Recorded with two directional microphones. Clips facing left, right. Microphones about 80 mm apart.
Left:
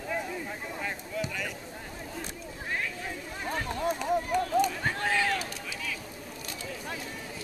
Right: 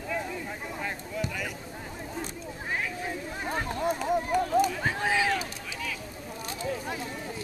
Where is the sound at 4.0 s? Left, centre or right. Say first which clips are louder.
Right 1 dB; centre.